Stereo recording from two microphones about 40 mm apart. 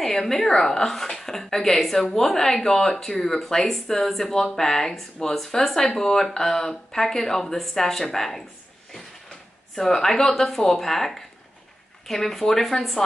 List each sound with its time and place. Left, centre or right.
0.0 s a woman's voice: centre
9.8 s a woman's voice: centre